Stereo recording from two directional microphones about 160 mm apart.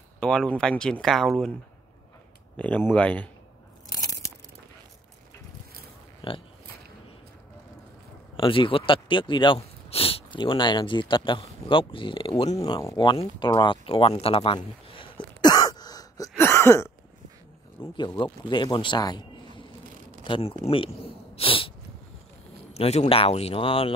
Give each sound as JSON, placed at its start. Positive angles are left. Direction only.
{"t": 0.2, "sound": "speech", "side_deg": 5}
{"t": 2.5, "sound": "speech", "side_deg": 10}
{"t": 6.2, "sound": "pig", "side_deg": 35}
{"t": 8.4, "sound": "speech", "side_deg": 35}
{"t": 12.9, "sound": "a sound", "side_deg": 30}
{"t": 17.9, "sound": "speech", "side_deg": 30}
{"t": 21.4, "sound": "sneeze", "side_deg": 35}
{"t": 22.8, "sound": "speech", "side_deg": 40}